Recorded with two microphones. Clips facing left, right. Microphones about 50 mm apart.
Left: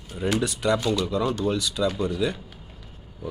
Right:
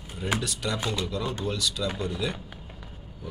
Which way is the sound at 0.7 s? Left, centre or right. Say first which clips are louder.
Left 6 dB; right.